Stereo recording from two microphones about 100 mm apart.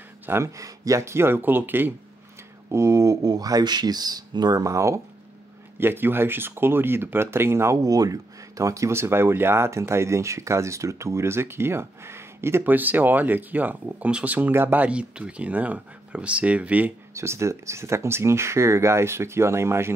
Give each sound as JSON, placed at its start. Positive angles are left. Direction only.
{"t": 0.3, "sound": "speech", "side_deg": -30}
{"t": 2.7, "sound": "speech", "side_deg": -30}
{"t": 17.1, "sound": "speech", "side_deg": -25}